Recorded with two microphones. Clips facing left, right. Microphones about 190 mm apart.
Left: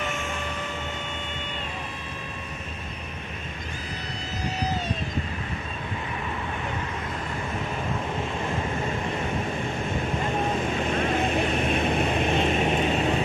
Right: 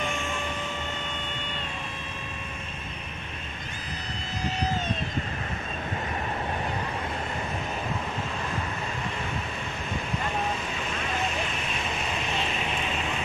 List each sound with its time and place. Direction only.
10.8 s vehicle: 50° left (ahead or behind)